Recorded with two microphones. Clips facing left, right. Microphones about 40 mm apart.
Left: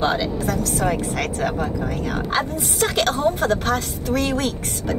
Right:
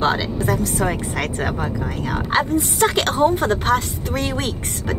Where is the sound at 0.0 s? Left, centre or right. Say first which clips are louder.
Right 1 dB; centre.